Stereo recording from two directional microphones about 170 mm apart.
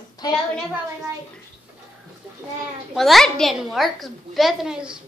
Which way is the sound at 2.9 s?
Centre (ahead or behind).